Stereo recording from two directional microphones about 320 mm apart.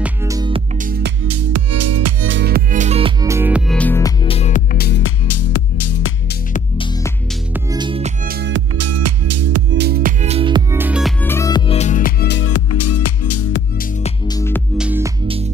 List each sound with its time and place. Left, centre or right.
0.0 s music: centre
0.8 s music: right
1.2 s music: right
2.3 s music: right; by 5.1 s left
5.2 s music: left
7.5 s music: centre
8.3 s music: right
8.7 s music: right
9.7 s music: right; by 13.6 s left
14.0 s music: centre
14.8 s music: centre